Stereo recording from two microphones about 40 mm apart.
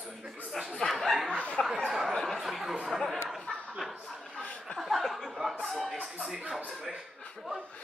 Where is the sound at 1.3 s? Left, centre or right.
Left.